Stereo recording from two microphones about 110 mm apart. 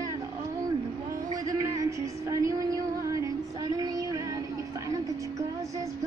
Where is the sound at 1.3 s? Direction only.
35° right (ahead or behind).